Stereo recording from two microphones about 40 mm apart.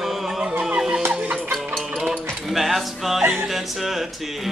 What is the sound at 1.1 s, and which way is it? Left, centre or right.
Music, right.